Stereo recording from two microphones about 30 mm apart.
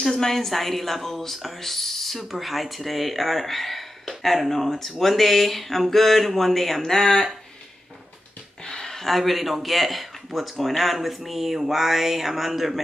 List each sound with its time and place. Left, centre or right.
0.1 s speech: centre
0.5 s speech: centre
2.3 s speech: centre
6.8 s speech: centre
8.6 s speech: centre